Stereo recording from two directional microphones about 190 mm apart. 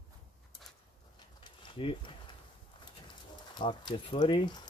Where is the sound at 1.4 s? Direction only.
25° left (ahead or behind).